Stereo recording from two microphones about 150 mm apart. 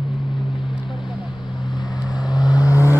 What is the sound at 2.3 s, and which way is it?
Vehicle, 25° left (ahead or behind).